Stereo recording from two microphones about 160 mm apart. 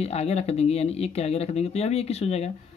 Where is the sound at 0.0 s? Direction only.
40° left (ahead or behind).